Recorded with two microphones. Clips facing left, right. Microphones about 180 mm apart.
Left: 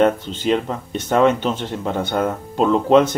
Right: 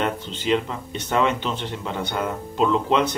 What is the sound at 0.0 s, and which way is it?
Speech, 45° left (ahead or behind).